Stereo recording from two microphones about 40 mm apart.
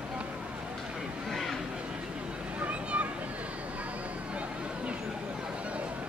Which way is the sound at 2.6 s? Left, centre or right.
Right.